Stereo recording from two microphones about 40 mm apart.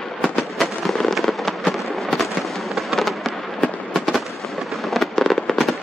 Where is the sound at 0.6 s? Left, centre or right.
Centre.